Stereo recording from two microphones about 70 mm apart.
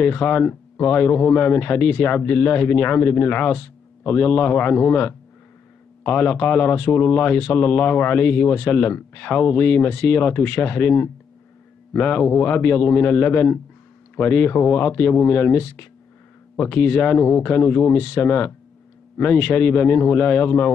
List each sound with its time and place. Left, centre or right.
0.0 s speech: left